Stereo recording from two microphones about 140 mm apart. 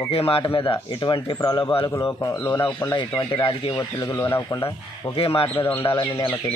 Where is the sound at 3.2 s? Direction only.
35° left (ahead or behind).